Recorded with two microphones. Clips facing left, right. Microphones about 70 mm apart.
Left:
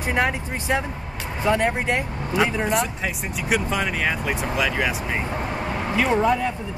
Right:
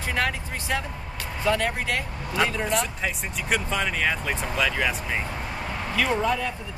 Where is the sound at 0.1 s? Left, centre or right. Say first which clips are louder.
Left 4 dB; left.